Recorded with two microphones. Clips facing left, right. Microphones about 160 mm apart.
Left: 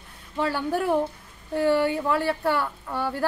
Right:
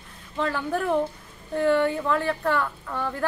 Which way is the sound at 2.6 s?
25° left (ahead or behind).